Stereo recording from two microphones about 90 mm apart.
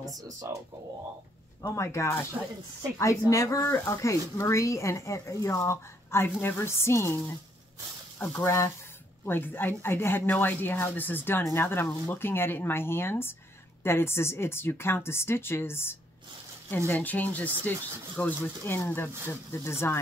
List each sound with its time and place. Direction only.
1.6 s speech: 35° left (ahead or behind)